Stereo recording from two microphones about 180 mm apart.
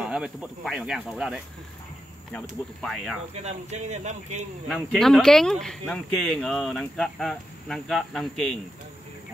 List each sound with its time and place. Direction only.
0.0 s speech: 5° right (ahead or behind)
2.8 s speech: centre (ahead or behind)
3.4 s speech: 40° right (ahead or behind)
4.6 s speech: centre (ahead or behind)